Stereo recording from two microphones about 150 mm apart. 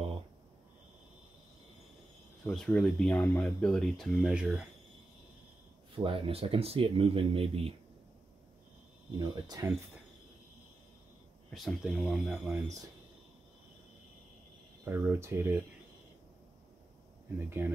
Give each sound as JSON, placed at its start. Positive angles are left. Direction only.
{"t": 2.4, "sound": "speech", "side_deg": 5}
{"t": 5.9, "sound": "speech", "side_deg": -35}
{"t": 9.2, "sound": "speech", "side_deg": -25}
{"t": 11.5, "sound": "speech", "side_deg": 0}
{"t": 14.9, "sound": "speech", "side_deg": -15}
{"t": 17.5, "sound": "speech", "side_deg": -15}